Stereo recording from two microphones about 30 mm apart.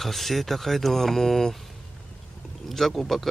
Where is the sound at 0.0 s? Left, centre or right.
Centre.